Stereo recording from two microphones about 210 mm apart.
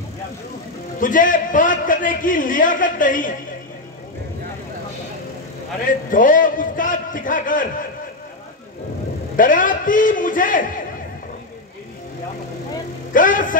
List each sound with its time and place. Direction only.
0.9 s a man's voice: 40° left (ahead or behind)
5.9 s a man's voice: 40° left (ahead or behind)
9.4 s a man's voice: 40° left (ahead or behind)
13.1 s a man's voice: 40° left (ahead or behind)